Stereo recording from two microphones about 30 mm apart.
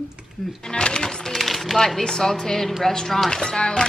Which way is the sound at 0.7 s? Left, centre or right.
Left.